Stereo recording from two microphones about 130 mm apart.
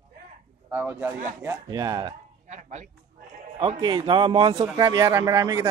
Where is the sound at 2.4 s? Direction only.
65° right (ahead or behind).